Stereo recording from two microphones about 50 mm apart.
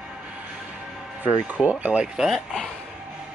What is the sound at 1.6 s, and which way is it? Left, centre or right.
Speech, right.